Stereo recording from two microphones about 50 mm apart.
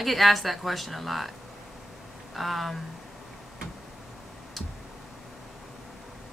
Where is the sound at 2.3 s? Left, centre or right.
Centre.